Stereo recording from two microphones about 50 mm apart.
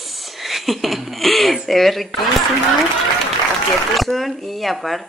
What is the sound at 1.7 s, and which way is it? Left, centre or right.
Speech, centre.